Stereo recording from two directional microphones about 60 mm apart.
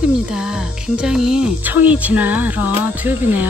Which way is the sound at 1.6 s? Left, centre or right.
Right.